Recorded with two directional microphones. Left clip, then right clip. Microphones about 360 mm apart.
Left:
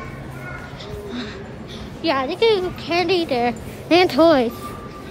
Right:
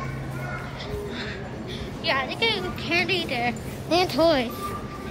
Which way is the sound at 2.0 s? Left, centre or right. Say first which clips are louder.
Left 5 dB; centre.